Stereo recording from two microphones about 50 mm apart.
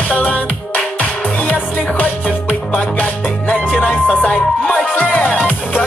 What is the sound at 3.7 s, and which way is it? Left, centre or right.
Music, left.